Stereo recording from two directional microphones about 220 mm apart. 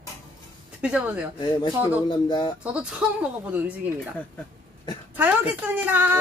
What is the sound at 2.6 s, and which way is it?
Speech, 5° right (ahead or behind).